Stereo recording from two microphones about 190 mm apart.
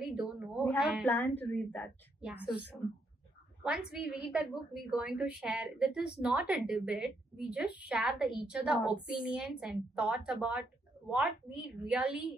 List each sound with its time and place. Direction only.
0.1 s a sound: 5° right (ahead or behind)
0.7 s speech: 5° right (ahead or behind)
1.0 s a woman's voice: 10° left (ahead or behind)
2.2 s speech: 5° right (ahead or behind)
3.6 s a woman's voice: 5° right (ahead or behind)